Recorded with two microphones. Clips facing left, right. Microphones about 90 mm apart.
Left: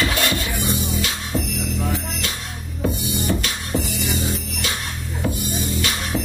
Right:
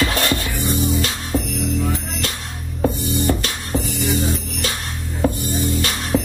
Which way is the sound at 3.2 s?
35° right (ahead or behind).